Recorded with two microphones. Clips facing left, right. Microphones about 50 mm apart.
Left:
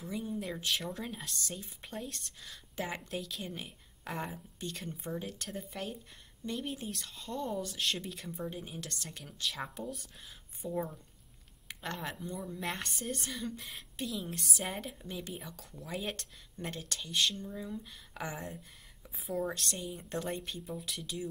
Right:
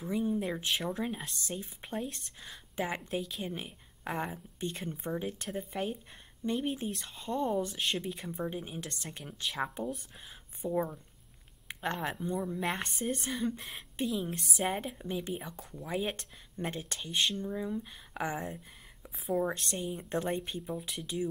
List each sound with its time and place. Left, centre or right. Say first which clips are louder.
0.1 s speech: right 7 dB; centre
0.4 s speech: right 3 dB; centre
8.5 s speech: right 4 dB; centre
8.8 s speech: right 2 dB; right
10.6 s speech: right 4 dB; centre
11.6 s a sound: right 5 dB; right
12.4 s speech: right 4 dB; centre
12.7 s a woman's voice: right 4 dB; right
16.7 s speech: left 1 dB; right
18.3 s speech: right 5 dB; centre
19.5 s speech: right 3 dB; centre